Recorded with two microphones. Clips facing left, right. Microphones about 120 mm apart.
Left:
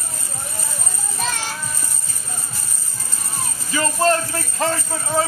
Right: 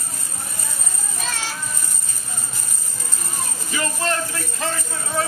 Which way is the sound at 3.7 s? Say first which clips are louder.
Left 6 dB; 35° left (ahead or behind).